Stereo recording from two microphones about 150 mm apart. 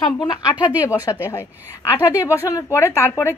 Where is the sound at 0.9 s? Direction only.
20° left (ahead or behind).